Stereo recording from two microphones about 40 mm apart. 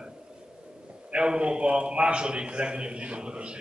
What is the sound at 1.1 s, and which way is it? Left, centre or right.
A man's voice, right.